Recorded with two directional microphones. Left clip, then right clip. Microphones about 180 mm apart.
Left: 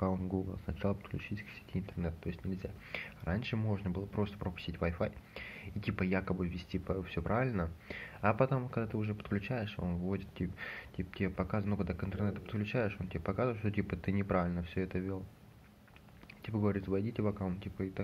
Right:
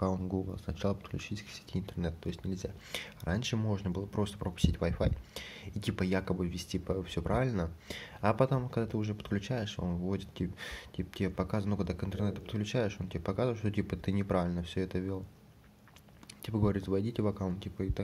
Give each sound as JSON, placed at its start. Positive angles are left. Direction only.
{"t": 0.1, "sound": "speech", "side_deg": -20}
{"t": 16.4, "sound": "speech", "side_deg": -35}